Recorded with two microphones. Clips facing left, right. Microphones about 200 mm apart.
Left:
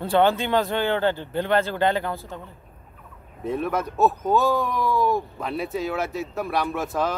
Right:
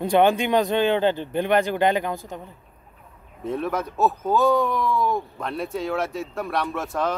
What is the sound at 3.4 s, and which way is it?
Speech, centre (ahead or behind).